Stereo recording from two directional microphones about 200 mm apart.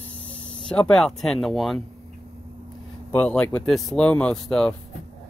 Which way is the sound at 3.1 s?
5° left (ahead or behind).